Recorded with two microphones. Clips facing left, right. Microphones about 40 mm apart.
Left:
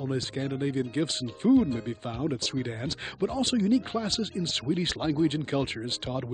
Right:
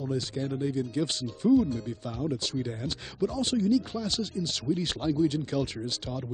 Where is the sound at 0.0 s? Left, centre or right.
Left.